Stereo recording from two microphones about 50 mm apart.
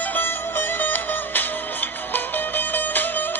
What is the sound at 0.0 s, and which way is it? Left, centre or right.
Music, left.